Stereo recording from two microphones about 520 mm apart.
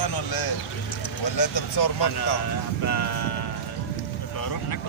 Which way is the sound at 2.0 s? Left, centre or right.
Left.